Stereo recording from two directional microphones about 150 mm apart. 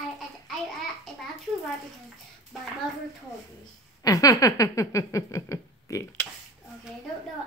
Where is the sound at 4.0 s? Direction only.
25° left (ahead or behind).